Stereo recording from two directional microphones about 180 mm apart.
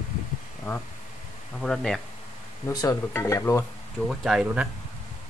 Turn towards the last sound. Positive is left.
turn(degrees=-5)  # may be behind; listen again after turning